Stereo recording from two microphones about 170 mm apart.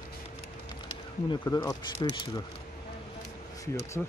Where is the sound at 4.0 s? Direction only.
5° left (ahead or behind).